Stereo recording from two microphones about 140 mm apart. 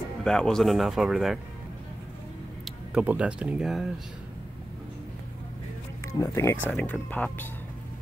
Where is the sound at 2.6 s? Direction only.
10° right (ahead or behind).